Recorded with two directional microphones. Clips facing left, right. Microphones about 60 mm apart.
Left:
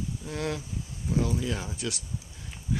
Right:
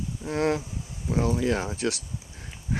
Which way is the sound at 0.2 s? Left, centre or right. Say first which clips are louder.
Right 10 dB; right.